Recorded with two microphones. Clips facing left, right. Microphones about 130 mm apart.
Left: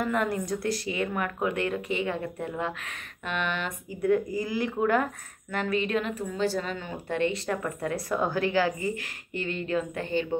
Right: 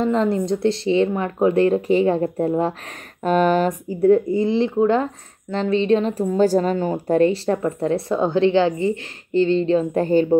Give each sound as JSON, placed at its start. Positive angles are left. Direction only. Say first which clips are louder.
{"t": 0.0, "sound": "speech", "louder": "right 8 dB", "side_deg": -25}